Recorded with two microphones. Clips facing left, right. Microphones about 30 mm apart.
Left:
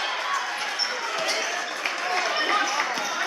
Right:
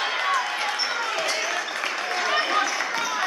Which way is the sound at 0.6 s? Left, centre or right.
Right.